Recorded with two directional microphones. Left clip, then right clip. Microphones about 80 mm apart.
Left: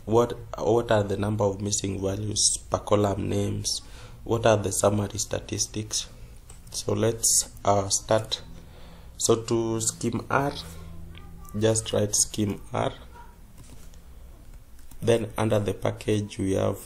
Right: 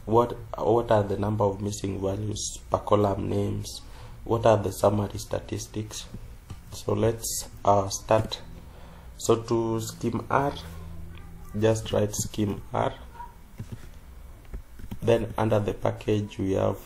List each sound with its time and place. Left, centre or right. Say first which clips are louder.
0.0 s speech: even; left
11.8 s speech: left 2 dB; left
15.0 s speech: even; left